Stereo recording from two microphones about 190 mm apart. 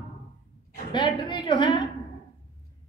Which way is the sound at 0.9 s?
25° left (ahead or behind).